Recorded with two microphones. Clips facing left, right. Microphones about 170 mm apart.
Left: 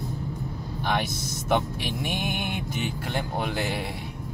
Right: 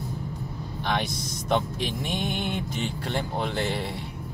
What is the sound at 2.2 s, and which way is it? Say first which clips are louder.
Mantra: right 1 dB; 60° left (ahead or behind).